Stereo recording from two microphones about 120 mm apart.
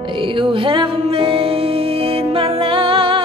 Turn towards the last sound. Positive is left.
turn(degrees=-50)  # may be behind; listen again after turning